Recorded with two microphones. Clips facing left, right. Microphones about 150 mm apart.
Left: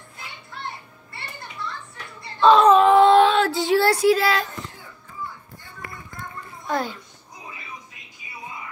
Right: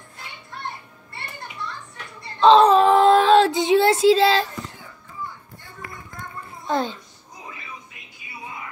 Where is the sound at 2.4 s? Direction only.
25° right (ahead or behind).